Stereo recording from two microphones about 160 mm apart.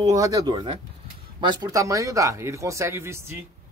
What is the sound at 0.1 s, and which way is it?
Speech, 20° right (ahead or behind).